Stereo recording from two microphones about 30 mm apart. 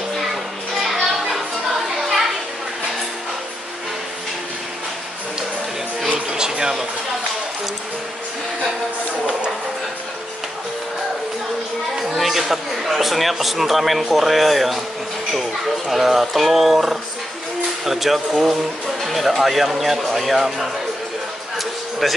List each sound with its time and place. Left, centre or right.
0.3 s music: centre
2.0 s children playing: centre
6.1 s music: right
12.2 s a man's voice: centre
15.9 s speech: centre
20.4 s speech: centre
22.0 s speech: centre